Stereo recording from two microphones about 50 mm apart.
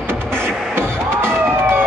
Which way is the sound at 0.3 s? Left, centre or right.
Right.